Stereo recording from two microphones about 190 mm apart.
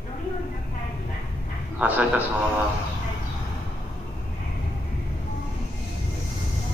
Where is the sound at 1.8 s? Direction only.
5° right (ahead or behind).